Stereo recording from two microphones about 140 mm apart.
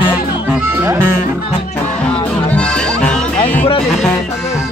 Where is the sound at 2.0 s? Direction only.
10° left (ahead or behind).